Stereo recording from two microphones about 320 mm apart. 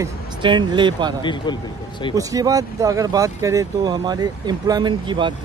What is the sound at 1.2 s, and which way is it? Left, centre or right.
Speech, centre.